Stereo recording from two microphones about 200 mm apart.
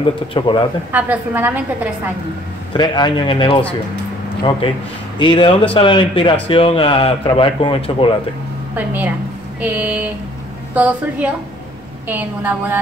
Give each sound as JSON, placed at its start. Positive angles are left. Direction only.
{"t": 0.0, "sound": "speech", "side_deg": 25}
{"t": 0.9, "sound": "a woman's voice", "side_deg": -10}
{"t": 2.7, "sound": "speech", "side_deg": 25}
{"t": 5.2, "sound": "speech", "side_deg": 25}
{"t": 8.7, "sound": "a woman's voice", "side_deg": -10}